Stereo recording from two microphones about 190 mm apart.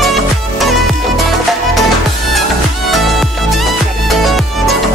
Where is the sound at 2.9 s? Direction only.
Centre (ahead or behind).